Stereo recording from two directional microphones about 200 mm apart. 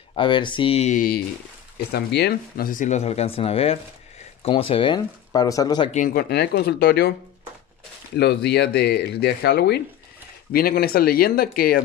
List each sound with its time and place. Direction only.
0.1 s speech: 25° left (ahead or behind); by 1.2 s 45° left (ahead or behind)
1.9 s speech: 55° left (ahead or behind); by 5.9 s 20° left (ahead or behind)
5.9 s speech: 40° left (ahead or behind)
8.2 s speech: 55° left (ahead or behind)